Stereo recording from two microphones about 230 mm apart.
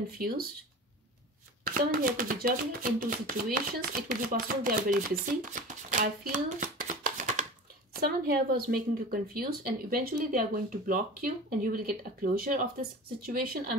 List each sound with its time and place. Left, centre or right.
0.2 s a woman's voice: right
1.6 s a woman's voice: right